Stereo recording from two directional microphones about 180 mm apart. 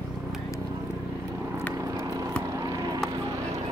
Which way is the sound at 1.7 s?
20° right (ahead or behind).